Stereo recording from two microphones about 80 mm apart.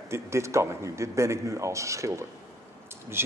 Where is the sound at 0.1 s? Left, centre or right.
Right.